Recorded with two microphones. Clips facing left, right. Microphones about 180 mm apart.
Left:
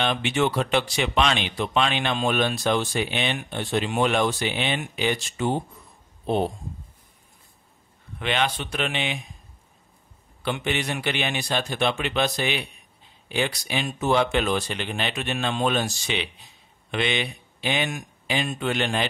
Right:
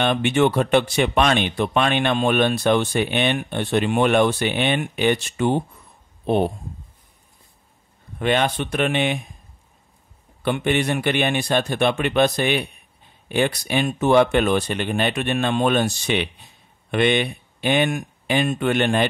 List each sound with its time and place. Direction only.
0.0 s speech: 55° right (ahead or behind)
8.2 s a man's voice: 50° right (ahead or behind)
10.4 s a man's voice: 50° right (ahead or behind)